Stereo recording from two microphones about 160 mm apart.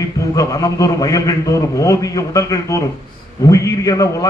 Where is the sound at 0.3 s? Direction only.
20° left (ahead or behind).